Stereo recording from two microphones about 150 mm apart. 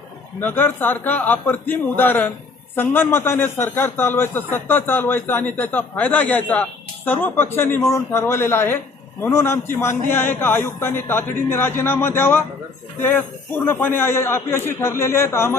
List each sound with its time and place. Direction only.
0.5 s speech: 10° left (ahead or behind)
13.7 s speech: 15° left (ahead or behind)